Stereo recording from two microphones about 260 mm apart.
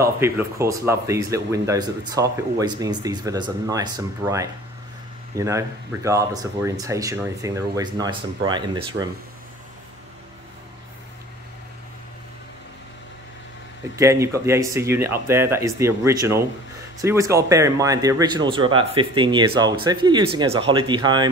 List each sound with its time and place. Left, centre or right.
0.0 s speech: centre
13.9 s speech: centre